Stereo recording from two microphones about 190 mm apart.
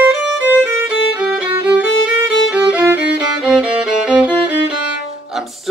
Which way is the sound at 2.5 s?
5° right (ahead or behind).